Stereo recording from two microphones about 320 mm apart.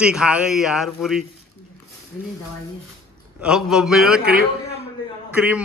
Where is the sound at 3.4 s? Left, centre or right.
Centre.